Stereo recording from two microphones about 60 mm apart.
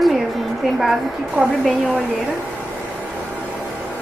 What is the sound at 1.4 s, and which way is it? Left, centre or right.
Speech, right.